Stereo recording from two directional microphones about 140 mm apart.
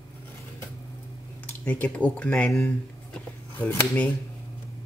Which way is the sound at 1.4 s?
10° left (ahead or behind).